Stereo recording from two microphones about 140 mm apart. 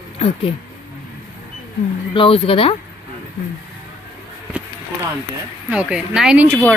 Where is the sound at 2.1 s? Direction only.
40° left (ahead or behind).